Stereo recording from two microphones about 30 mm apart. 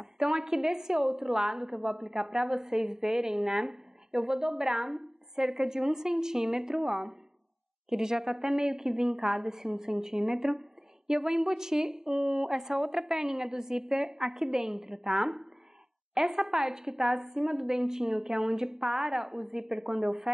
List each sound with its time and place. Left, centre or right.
0.2 s a woman's voice: centre
7.9 s a woman's voice: centre
8.3 s a woman's voice: centre
9.5 s a woman's voice: centre
13.2 s a woman's voice: centre
18.8 s a woman's voice: centre